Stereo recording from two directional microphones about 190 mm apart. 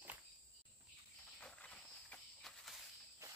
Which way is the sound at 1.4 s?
5° left (ahead or behind).